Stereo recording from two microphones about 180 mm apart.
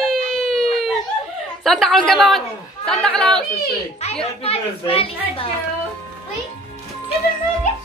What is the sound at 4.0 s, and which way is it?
A child's voice, 35° left (ahead or behind).